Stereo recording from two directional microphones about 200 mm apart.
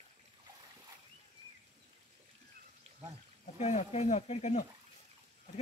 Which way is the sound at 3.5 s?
35° left (ahead or behind).